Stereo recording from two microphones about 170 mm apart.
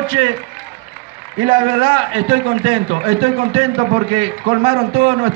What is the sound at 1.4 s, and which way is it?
A man's voice, 30° right (ahead or behind).